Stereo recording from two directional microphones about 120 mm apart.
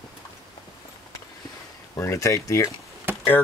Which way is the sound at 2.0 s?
25° left (ahead or behind).